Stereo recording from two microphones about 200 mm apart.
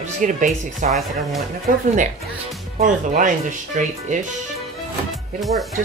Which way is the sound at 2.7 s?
40° right (ahead or behind).